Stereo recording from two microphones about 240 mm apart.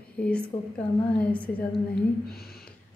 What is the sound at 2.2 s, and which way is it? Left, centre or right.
Speech, left.